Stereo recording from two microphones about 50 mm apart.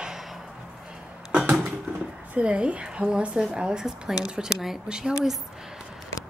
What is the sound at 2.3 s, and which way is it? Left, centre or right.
A woman's voice, right.